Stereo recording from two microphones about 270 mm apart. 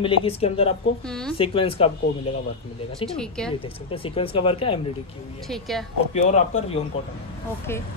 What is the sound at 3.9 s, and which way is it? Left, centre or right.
Speech, centre.